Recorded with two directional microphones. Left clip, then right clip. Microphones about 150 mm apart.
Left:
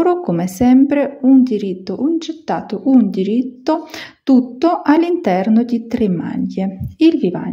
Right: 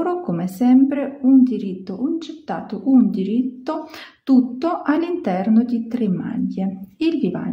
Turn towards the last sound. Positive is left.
turn(degrees=30)  # may be behind; listen again after turning